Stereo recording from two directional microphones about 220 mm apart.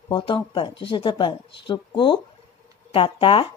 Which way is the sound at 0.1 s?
20° left (ahead or behind).